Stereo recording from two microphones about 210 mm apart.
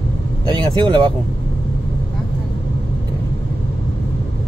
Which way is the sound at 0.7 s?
20° right (ahead or behind).